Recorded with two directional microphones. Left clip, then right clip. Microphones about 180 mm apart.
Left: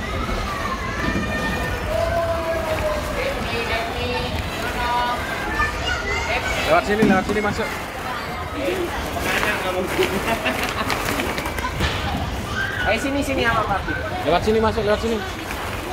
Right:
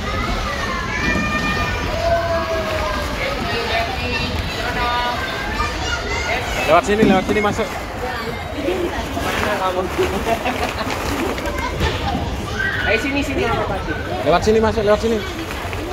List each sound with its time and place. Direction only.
6.7 s speech: 20° right (ahead or behind)
14.3 s speech: 15° right (ahead or behind)